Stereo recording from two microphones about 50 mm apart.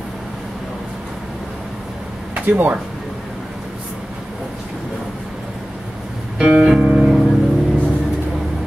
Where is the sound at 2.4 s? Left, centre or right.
Right.